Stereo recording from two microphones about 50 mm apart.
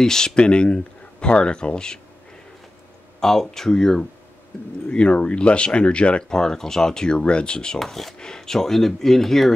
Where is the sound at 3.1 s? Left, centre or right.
Centre.